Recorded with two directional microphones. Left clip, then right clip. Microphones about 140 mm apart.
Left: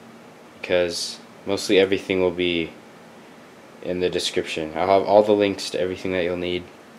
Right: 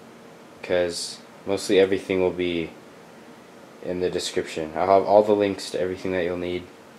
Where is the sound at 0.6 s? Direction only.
15° left (ahead or behind).